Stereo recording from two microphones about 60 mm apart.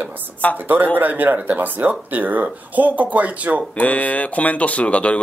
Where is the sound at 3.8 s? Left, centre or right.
Left.